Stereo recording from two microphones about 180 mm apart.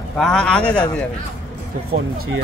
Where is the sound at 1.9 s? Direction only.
60° right (ahead or behind).